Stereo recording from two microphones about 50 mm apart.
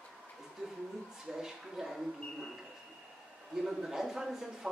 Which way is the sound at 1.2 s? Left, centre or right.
Centre.